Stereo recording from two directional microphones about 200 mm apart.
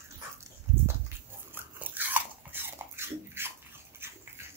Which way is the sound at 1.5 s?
10° right (ahead or behind).